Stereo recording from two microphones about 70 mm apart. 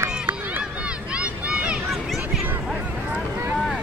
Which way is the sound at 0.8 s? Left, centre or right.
Centre.